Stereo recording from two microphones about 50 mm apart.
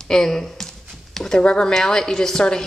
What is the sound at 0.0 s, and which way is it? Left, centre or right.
A woman's voice, centre.